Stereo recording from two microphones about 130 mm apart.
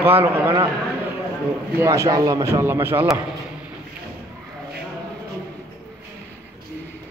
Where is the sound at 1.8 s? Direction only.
20° right (ahead or behind).